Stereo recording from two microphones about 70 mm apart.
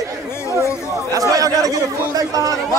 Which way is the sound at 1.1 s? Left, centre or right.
Right.